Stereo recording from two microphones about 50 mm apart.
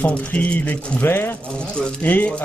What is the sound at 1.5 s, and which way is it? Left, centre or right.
Speech, centre.